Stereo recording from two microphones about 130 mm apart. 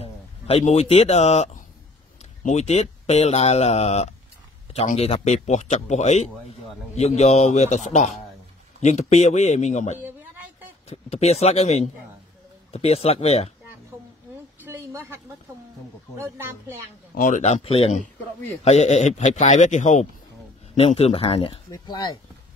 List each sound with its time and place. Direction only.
0.0 s speech: 50° left (ahead or behind)
9.9 s a sound: 15° right (ahead or behind)
10.9 s speech: 55° left (ahead or behind)
14.6 s a sound: 20° right (ahead or behind)
17.2 s speech: 70° left (ahead or behind)
17.6 s speech: 50° left (ahead or behind); by 20.1 s 65° left (ahead or behind)
20.7 s speech: 50° left (ahead or behind)
21.6 s speech: 30° left (ahead or behind)